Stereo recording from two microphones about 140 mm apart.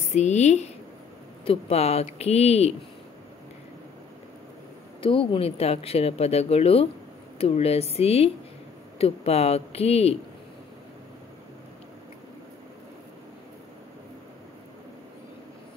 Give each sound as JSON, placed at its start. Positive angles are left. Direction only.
{"t": 0.1, "sound": "speech", "side_deg": 55}
{"t": 5.0, "sound": "speech", "side_deg": 40}